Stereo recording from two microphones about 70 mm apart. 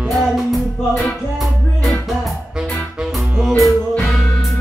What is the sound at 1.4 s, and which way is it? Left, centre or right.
Music, centre.